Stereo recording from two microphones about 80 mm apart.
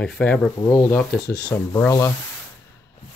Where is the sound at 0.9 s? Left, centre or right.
Left.